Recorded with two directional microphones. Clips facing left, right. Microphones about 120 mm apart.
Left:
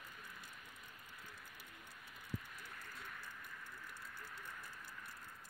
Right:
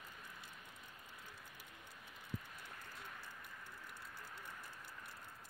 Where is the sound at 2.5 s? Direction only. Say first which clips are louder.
Even; 25° right (ahead or behind).